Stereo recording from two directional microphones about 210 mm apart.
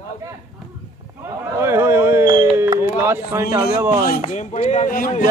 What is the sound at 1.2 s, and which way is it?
A man's voice, 10° right (ahead or behind).